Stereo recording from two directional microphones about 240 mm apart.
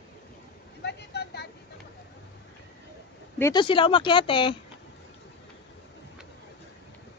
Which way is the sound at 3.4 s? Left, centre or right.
Centre.